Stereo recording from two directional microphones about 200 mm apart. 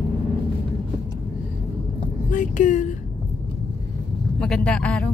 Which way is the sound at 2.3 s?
40° left (ahead or behind).